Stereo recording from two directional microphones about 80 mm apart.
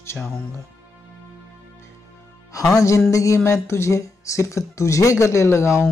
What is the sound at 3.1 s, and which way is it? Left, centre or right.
Speech, left.